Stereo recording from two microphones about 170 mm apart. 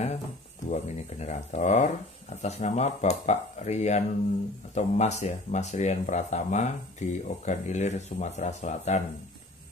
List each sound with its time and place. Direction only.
0.7 s speech: 40° left (ahead or behind)